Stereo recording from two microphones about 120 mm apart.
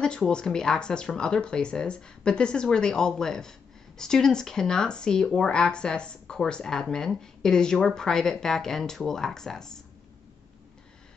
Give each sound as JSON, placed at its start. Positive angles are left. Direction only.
{"t": 0.0, "sound": "speech", "side_deg": 5}